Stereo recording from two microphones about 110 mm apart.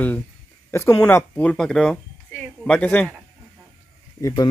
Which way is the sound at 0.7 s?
20° left (ahead or behind).